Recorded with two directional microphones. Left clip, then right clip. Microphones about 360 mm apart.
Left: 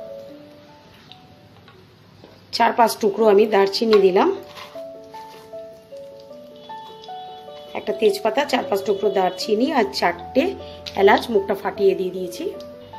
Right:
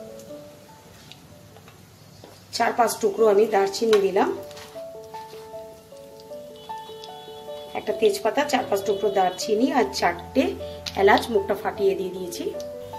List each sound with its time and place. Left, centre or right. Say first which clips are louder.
2.5 s speech: left 5 dB; left
7.7 s speech: left 2 dB; left